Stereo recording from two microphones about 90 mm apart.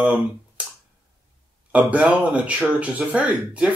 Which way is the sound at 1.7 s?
15° right (ahead or behind).